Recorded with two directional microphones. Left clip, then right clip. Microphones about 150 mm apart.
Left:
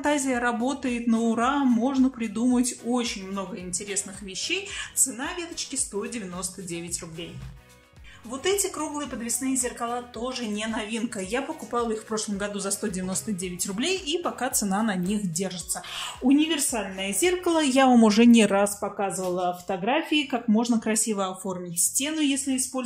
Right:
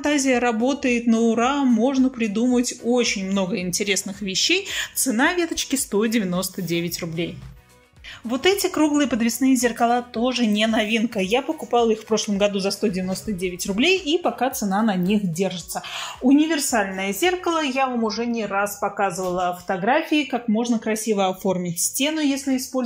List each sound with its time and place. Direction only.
0.0 s speech: centre (ahead or behind)
3.3 s speech: 25° right (ahead or behind)
5.1 s speech: 45° right (ahead or behind)
6.3 s speech: 25° right (ahead or behind)
8.3 s a woman's voice: 30° right (ahead or behind)
10.1 s speech: 25° right (ahead or behind); by 15.5 s centre (ahead or behind)
16.3 s speech: 15° left (ahead or behind)
17.5 s speech: 40° left (ahead or behind)
18.8 s speech: 25° left (ahead or behind)
21.2 s speech: 5° right (ahead or behind)
22.5 s speech: 15° left (ahead or behind)